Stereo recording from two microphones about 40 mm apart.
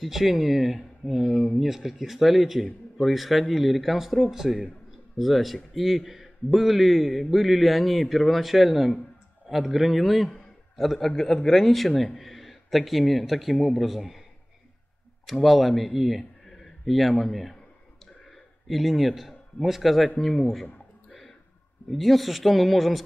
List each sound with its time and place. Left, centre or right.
0.0 s a man's voice: centre
11.6 s a man's voice: centre
15.2 s a man's voice: centre
18.7 s a man's voice: centre
21.9 s a man's voice: centre